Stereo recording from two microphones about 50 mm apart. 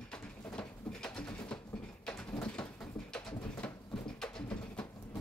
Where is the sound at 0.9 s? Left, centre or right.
Centre.